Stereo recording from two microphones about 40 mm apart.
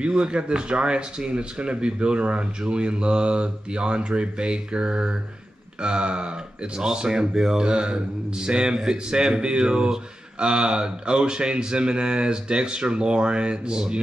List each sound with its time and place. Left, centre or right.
0.0 s speech: right